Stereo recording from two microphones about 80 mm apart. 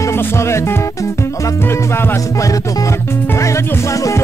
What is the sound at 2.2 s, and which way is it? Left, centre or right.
Music, left.